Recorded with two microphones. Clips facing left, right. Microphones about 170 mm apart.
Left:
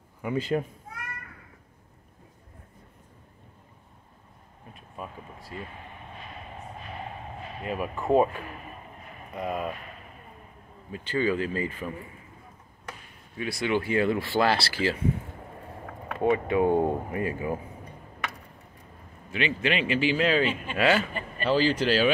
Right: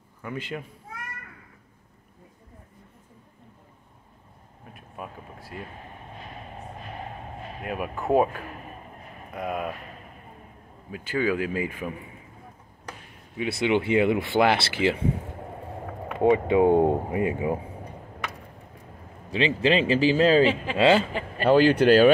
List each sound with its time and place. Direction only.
0.4 s speech: 40° left (ahead or behind)
4.9 s a sound: 5° right (ahead or behind)
7.6 s speech: 5° right (ahead or behind)
10.9 s speech: 10° right (ahead or behind)
13.4 s speech: 20° right (ahead or behind)
16.2 s speech: 25° right (ahead or behind)
19.3 s speech: 35° right (ahead or behind)
20.7 s speech: 25° right (ahead or behind)
21.5 s speech: 60° right (ahead or behind)